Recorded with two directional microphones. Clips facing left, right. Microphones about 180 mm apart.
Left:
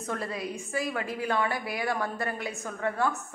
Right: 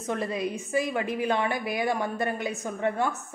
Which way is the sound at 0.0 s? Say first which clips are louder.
Right 4 dB; 20° right (ahead or behind).